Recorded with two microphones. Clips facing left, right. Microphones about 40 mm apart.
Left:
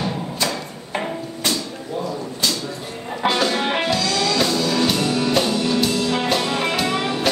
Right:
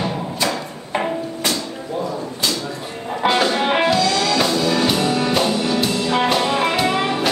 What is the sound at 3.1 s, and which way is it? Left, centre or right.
Music, centre.